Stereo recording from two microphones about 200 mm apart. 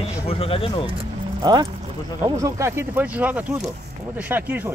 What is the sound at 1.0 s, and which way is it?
Music, 20° right (ahead or behind).